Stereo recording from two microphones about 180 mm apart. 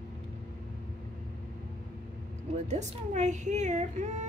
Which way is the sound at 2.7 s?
40° right (ahead or behind).